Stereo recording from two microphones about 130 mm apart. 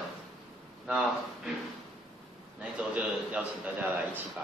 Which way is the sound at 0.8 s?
5° right (ahead or behind).